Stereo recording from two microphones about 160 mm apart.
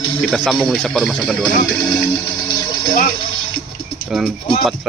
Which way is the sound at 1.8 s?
25° left (ahead or behind).